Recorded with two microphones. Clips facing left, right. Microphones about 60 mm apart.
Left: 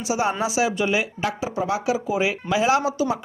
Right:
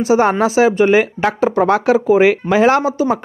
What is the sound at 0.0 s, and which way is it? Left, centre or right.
Speech, right.